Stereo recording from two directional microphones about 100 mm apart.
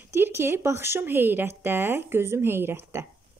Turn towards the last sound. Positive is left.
turn(degrees=-25)  # may be behind; listen again after turning